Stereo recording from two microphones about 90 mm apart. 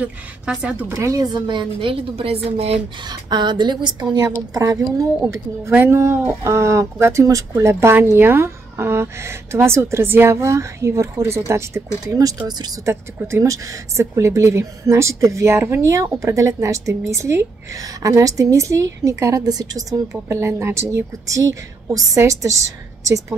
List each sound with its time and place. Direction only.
0.0 s speech: 15° right (ahead or behind)
0.8 s a woman's voice: 35° right (ahead or behind); by 2.6 s 90° right
3.1 s a woman's voice: 55° right (ahead or behind)
4.3 s speech: 40° right (ahead or behind)
5.2 s a woman's voice: 30° right (ahead or behind); by 12.7 s 50° right (ahead or behind)
12.8 s speech: 30° right (ahead or behind)
20.2 s speech: 30° right (ahead or behind)